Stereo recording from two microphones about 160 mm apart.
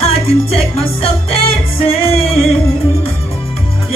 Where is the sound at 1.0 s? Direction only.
35° left (ahead or behind).